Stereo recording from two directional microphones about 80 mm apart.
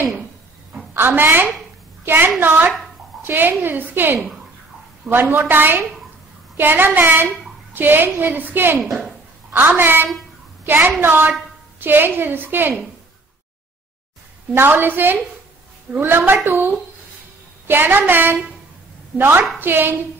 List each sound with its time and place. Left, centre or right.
0.9 s a woman's voice: right
14.5 s a woman's voice: right